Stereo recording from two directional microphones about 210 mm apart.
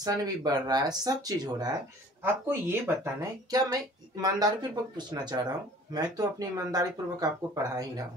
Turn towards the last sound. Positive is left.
turn(degrees=-15)  # may be behind; listen again after turning